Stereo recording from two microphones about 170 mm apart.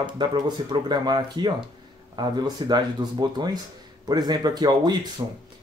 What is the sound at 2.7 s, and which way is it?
Speech, 25° right (ahead or behind).